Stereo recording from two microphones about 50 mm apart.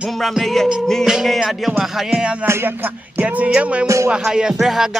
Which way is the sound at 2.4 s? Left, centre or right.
Right.